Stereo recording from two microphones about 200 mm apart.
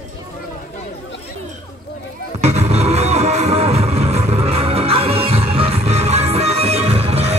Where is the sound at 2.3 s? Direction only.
35° right (ahead or behind).